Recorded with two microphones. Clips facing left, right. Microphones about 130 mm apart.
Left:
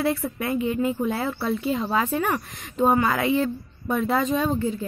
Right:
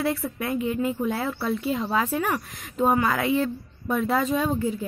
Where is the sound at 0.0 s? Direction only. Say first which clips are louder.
Left 2 dB; centre (ahead or behind).